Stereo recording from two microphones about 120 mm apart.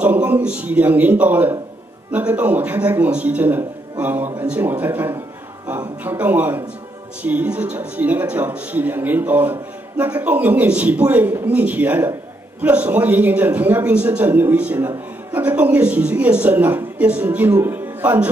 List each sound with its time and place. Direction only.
0.0 s a man's voice: 15° right (ahead or behind)